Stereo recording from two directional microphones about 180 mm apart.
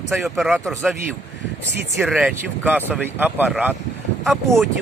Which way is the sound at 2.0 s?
5° right (ahead or behind).